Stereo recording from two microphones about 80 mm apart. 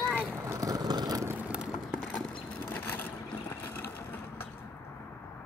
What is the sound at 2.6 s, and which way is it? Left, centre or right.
Boat, left.